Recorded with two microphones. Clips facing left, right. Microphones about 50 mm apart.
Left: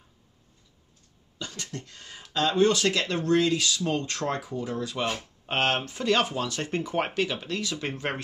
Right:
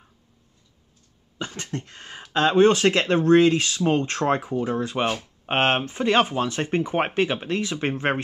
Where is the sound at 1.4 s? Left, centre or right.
Right.